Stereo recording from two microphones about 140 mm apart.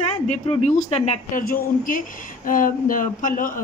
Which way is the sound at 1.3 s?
80° left.